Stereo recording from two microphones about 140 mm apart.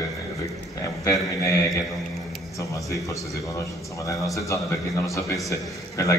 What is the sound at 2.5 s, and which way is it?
A man's voice, 25° left (ahead or behind).